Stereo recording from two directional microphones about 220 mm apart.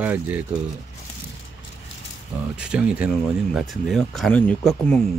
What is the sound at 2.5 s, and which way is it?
Speech, 5° right (ahead or behind).